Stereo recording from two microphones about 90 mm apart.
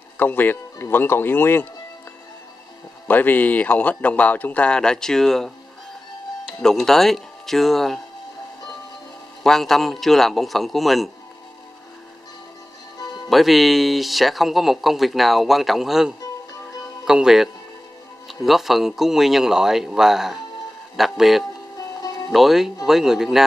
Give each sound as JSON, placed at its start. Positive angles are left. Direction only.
{"t": 0.2, "sound": "speech", "side_deg": 20}
{"t": 3.1, "sound": "speech", "side_deg": 20}
{"t": 6.6, "sound": "speech", "side_deg": 5}
{"t": 9.4, "sound": "speech", "side_deg": 5}
{"t": 13.3, "sound": "speech", "side_deg": 0}